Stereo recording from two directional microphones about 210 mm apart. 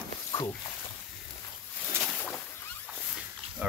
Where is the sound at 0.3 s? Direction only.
15° left (ahead or behind).